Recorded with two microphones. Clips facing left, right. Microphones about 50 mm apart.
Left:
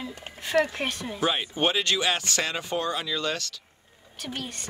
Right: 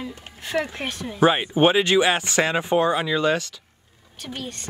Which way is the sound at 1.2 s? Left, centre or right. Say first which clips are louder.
Right 9 dB; right.